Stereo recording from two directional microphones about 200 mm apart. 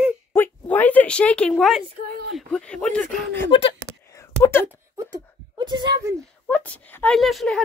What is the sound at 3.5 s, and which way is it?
Speech, 25° left (ahead or behind).